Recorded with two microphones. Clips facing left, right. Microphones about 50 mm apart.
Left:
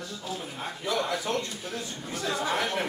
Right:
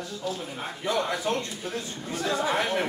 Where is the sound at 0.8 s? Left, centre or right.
Right.